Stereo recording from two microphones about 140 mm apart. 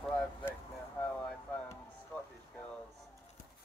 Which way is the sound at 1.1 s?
10° left (ahead or behind).